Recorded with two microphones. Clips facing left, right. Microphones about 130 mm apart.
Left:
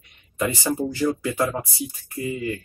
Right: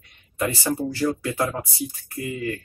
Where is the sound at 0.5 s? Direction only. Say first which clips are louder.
Left 1 dB; 20° left (ahead or behind).